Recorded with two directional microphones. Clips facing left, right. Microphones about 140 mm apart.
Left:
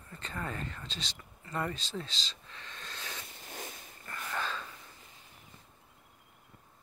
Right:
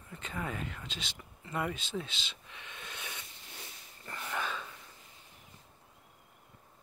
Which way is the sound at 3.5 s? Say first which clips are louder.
Left 9 dB; 45° left (ahead or behind).